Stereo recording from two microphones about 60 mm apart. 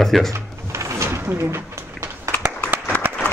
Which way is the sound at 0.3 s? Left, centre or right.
Right.